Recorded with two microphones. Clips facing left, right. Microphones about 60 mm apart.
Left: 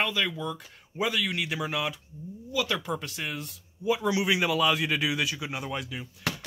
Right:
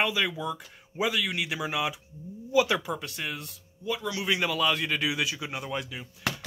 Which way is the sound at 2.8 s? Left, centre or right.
Centre.